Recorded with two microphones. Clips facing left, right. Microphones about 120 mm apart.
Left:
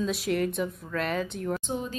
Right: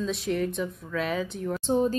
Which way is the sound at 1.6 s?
35° right (ahead or behind).